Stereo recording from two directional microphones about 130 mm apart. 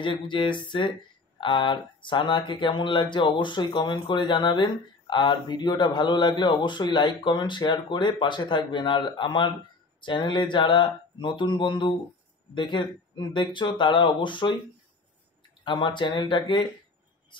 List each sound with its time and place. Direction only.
0.0 s speech: 40° left (ahead or behind)
15.6 s speech: 35° left (ahead or behind)